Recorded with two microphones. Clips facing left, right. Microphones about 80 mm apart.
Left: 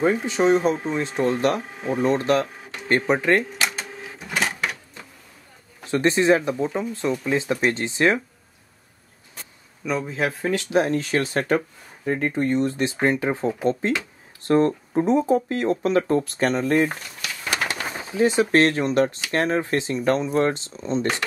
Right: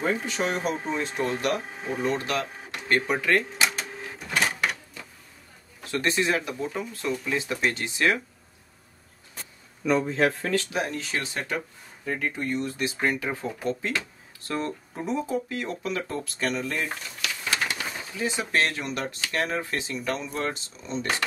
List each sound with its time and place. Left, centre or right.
0.0 s speech: left
3.6 s printer: centre
5.9 s speech: left
9.8 s a man's voice: centre
10.7 s speech: left
12.0 s speech: left
17.5 s bird: left
18.5 s speech: left
20.2 s speech: left
20.5 s speech: left